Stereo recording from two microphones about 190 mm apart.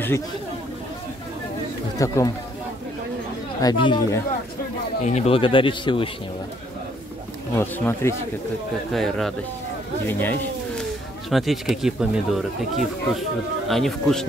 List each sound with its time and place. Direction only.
2.0 s speech: 15° left (ahead or behind)
3.6 s speech: 25° left (ahead or behind)
5.0 s speech: 35° left (ahead or behind)
7.5 s speech: 10° left (ahead or behind)
8.9 s speech: centre (ahead or behind)
11.2 s speech: centre (ahead or behind)